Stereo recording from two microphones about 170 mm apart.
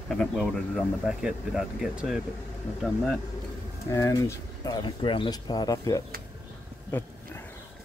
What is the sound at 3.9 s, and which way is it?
Speech, 15° left (ahead or behind).